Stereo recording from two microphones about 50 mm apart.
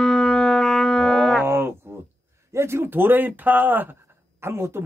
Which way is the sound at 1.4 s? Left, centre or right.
Right.